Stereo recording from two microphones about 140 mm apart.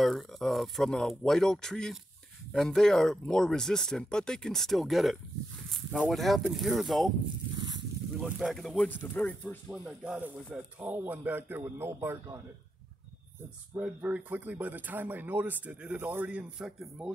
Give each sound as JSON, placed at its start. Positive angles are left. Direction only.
{"t": 0.0, "sound": "speech", "side_deg": 0}
{"t": 7.5, "sound": "a sound", "side_deg": -30}
{"t": 8.2, "sound": "speech", "side_deg": 0}
{"t": 9.7, "sound": "speech", "side_deg": -5}
{"t": 13.7, "sound": "speech", "side_deg": -10}